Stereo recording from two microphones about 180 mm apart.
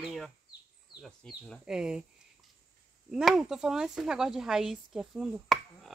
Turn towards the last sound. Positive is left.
turn(degrees=0)  # may be behind; listen again after turning